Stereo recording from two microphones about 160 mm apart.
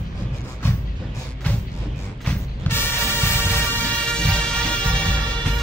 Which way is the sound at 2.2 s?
15° left (ahead or behind).